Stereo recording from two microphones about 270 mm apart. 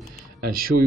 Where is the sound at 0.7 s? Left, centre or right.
Right.